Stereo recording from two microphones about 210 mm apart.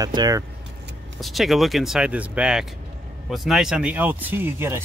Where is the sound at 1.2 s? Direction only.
Centre (ahead or behind).